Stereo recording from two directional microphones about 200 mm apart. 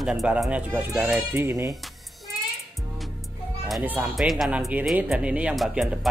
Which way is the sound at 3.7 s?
10° right (ahead or behind).